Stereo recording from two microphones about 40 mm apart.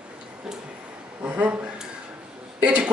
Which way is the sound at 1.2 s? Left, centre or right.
Right.